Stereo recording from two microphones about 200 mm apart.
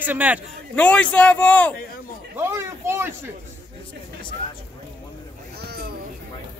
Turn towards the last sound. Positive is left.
turn(degrees=-50)  # may be behind; listen again after turning